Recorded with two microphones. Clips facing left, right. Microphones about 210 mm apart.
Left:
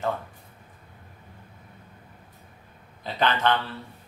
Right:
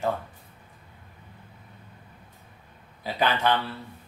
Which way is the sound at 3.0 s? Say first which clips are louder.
Even; 10° right (ahead or behind).